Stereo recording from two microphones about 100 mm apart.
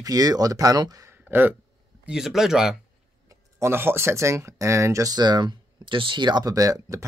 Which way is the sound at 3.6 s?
25° right (ahead or behind).